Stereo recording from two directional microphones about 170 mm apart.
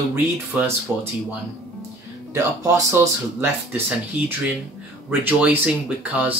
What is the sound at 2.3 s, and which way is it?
Speech, 15° right (ahead or behind).